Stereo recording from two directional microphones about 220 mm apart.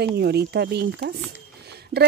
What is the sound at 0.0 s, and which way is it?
A woman's voice, 50° right (ahead or behind).